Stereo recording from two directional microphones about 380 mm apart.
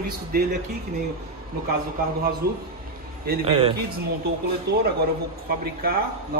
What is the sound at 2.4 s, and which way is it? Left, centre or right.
A man's voice, right.